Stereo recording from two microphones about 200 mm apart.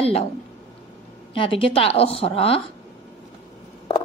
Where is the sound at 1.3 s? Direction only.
25° left (ahead or behind).